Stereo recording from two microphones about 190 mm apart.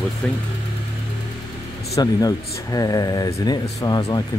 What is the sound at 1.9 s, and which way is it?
Speech, 20° left (ahead or behind).